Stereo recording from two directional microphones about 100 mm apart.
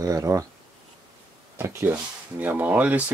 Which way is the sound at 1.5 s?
20° right (ahead or behind).